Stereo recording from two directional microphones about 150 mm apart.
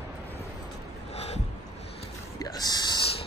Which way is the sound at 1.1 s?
45° left (ahead or behind).